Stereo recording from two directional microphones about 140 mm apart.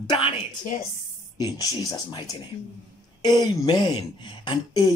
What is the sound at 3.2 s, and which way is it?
Speech, 30° left (ahead or behind).